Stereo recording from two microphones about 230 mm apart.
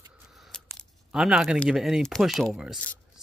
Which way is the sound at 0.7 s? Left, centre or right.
Centre.